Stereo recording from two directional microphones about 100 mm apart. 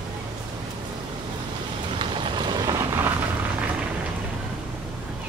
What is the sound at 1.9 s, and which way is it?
Vehicle, 55° right (ahead or behind).